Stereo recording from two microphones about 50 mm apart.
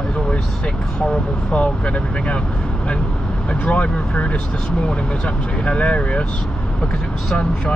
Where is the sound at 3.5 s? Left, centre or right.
Left.